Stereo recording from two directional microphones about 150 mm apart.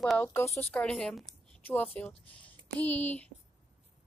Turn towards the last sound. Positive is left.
turn(degrees=10)  # may be behind; listen again after turning